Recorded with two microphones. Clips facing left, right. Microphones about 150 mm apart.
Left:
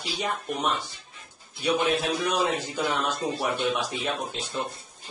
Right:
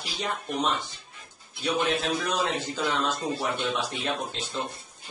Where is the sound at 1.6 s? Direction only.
15° left (ahead or behind).